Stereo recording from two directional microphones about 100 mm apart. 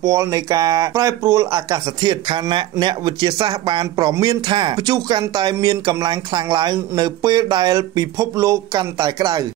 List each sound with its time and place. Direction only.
0.0 s a man's voice: 30° right (ahead or behind)